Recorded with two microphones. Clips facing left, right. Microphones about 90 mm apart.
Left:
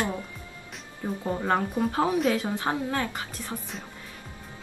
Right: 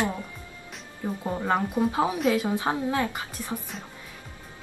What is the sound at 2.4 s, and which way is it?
Speech, 15° right (ahead or behind).